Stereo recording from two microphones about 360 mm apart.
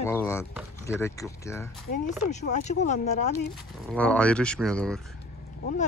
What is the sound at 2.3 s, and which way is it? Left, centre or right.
Speech, centre.